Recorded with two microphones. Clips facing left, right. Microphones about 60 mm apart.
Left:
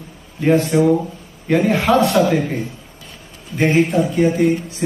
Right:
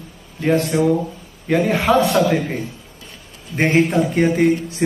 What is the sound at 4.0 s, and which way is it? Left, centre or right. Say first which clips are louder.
Speech: left 1 dB; right.